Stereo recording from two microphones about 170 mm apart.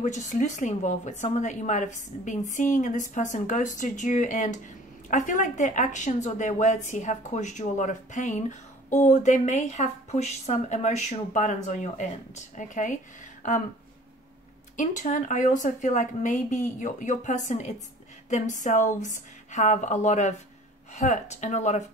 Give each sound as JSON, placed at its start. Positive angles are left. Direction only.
{"t": 0.0, "sound": "a woman's voice", "side_deg": 45}
{"t": 14.8, "sound": "a woman's voice", "side_deg": 50}